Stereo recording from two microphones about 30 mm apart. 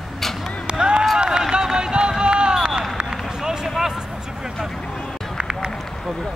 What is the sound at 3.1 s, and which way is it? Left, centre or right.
Run, centre.